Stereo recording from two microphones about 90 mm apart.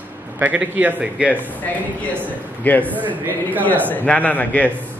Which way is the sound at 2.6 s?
20° left (ahead or behind).